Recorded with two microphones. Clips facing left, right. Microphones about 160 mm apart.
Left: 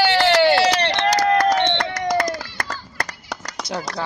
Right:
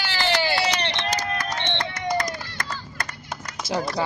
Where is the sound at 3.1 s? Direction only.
75° left (ahead or behind).